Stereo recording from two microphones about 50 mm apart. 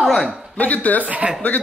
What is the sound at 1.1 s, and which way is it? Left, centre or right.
Speech, right.